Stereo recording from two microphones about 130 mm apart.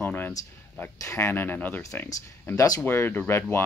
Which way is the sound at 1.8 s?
25° left (ahead or behind).